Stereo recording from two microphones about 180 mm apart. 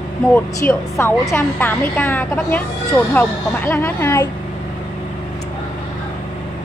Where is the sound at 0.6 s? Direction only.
15° left (ahead or behind).